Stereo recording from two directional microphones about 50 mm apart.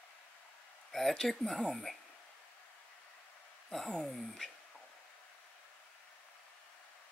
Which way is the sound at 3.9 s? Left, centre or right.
Centre.